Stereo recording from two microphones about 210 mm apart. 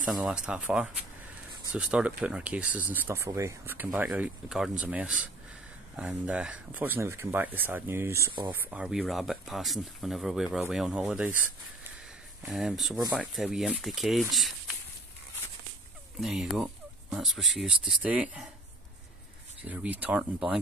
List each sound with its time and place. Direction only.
0.0 s speech: 5° right (ahead or behind)
12.4 s speech: centre (ahead or behind)
16.2 s speech: centre (ahead or behind)
19.6 s speech: 5° right (ahead or behind)